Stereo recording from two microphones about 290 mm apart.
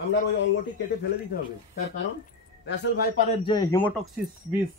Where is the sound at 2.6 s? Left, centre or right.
Left.